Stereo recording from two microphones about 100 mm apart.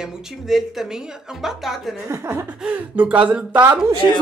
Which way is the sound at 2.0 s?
30° right (ahead or behind).